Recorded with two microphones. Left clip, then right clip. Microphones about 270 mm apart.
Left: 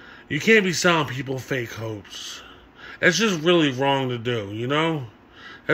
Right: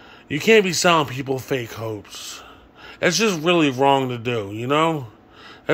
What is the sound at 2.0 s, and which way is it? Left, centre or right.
Speech, right.